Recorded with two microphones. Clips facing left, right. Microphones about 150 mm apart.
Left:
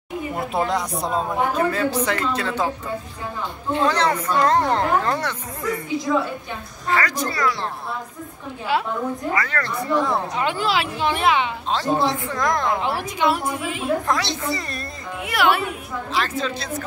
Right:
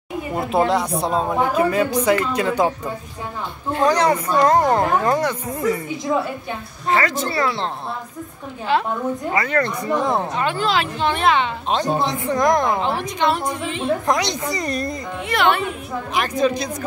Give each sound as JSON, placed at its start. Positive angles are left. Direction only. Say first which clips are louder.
{"t": 0.7, "sound": "speech", "louder": "right 4 dB", "side_deg": 0}
{"t": 1.6, "sound": "speech", "louder": "right 3 dB", "side_deg": -15}
{"t": 3.8, "sound": "speech", "louder": "right 4 dB", "side_deg": -10}
{"t": 6.1, "sound": "speech", "louder": "right 2 dB", "side_deg": -25}
{"t": 9.3, "sound": "speech", "louder": "right 4 dB", "side_deg": -20}
{"t": 10.3, "sound": "speech", "louder": "right 2 dB", "side_deg": 15}
{"t": 11.7, "sound": "speech", "louder": "even", "side_deg": -20}
{"t": 12.8, "sound": "speech", "louder": "right 1 dB", "side_deg": 10}
{"t": 14.0, "sound": "speech", "louder": "right 2 dB", "side_deg": -20}
{"t": 15.2, "sound": "speech", "louder": "right 1 dB", "side_deg": 5}
{"t": 16.2, "sound": "speech", "louder": "right 6 dB", "side_deg": -15}